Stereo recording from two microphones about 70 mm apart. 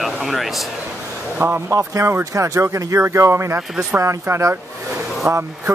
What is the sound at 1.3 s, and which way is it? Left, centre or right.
Speech, right.